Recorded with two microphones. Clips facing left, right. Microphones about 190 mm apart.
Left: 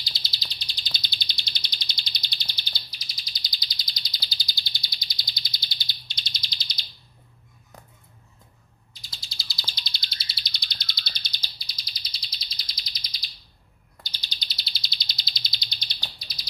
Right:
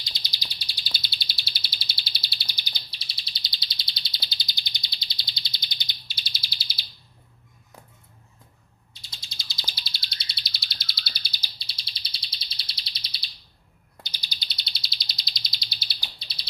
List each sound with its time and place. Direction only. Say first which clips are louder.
0.0 s bird: even; 15° right (ahead or behind)
2.9 s bird: right 1 dB; 30° right (ahead or behind)
6.0 s bird: even; 5° right (ahead or behind)
9.4 s bird: right 1 dB; 20° right (ahead or behind)
9.8 s bird: left 1 dB; centre (ahead or behind)
11.5 s bird: even; 30° right (ahead or behind)
14.0 s bird: left 1 dB; 10° right (ahead or behind)
14.4 s bird: even; centre (ahead or behind)
16.2 s a sound: even; 30° right (ahead or behind)